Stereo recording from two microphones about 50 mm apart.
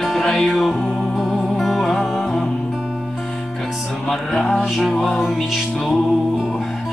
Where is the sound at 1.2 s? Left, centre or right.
Centre.